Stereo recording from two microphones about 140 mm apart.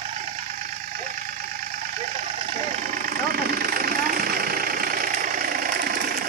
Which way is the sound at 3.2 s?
90° right.